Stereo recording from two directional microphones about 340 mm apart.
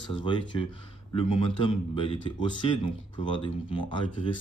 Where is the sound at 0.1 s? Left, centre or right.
Centre.